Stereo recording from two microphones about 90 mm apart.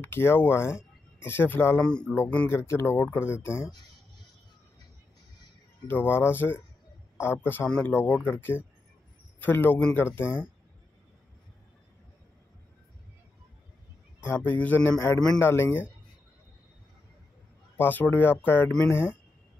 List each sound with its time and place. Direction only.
0.0 s speech: 25° left (ahead or behind)
1.8 s mantra: 10° left (ahead or behind)
2.1 s speech: 20° left (ahead or behind)
5.9 s speech: 25° left (ahead or behind)
14.2 s speech: 25° left (ahead or behind)
17.7 s speech: 20° left (ahead or behind)